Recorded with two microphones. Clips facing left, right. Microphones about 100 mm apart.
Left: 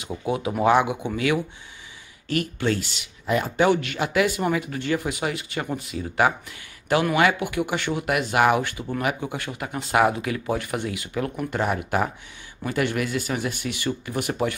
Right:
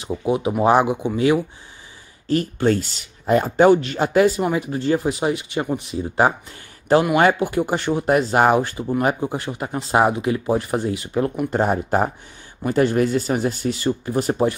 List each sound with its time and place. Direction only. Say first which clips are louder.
0.1 s speech: right 5 dB; 20° right (ahead or behind)
4.4 s speech: right 3 dB; 25° right (ahead or behind)